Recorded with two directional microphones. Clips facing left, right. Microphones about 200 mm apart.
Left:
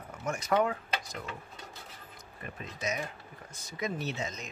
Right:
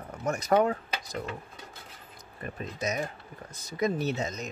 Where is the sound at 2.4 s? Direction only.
40° right (ahead or behind).